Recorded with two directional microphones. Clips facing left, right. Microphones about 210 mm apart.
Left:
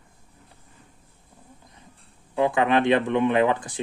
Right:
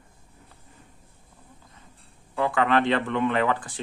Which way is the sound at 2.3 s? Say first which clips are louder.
Left 2 dB; 15° left (ahead or behind).